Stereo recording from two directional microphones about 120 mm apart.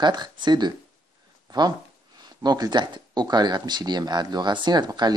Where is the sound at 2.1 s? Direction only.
35° right (ahead or behind).